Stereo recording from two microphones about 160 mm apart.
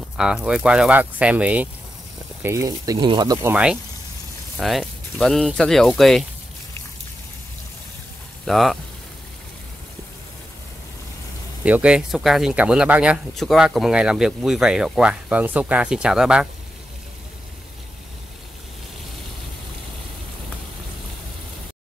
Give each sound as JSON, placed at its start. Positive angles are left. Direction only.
{"t": 0.2, "sound": "speech", "side_deg": -5}
{"t": 2.4, "sound": "speech", "side_deg": -20}
{"t": 3.4, "sound": "speech", "side_deg": -10}
{"t": 8.5, "sound": "speech", "side_deg": 0}
{"t": 11.6, "sound": "speech", "side_deg": -10}